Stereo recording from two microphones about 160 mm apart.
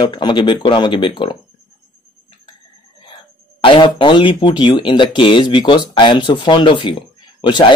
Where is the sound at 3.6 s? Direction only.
30° left (ahead or behind).